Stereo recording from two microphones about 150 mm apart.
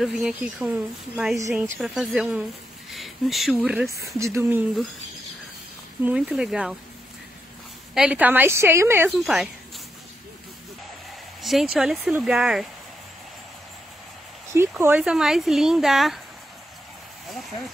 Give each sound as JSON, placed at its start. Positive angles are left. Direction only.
{"t": 0.0, "sound": "a woman's voice", "side_deg": 0}
{"t": 2.9, "sound": "a sound", "side_deg": 0}
{"t": 3.5, "sound": "a woman's voice", "side_deg": -5}
{"t": 4.2, "sound": "a woman's voice", "side_deg": -20}
{"t": 6.0, "sound": "a woman's voice", "side_deg": -5}
{"t": 7.9, "sound": "a woman's voice", "side_deg": -5}
{"t": 9.1, "sound": "a woman's voice", "side_deg": 0}
{"t": 11.4, "sound": "a woman's voice", "side_deg": -5}
{"t": 14.8, "sound": "a woman's voice", "side_deg": -10}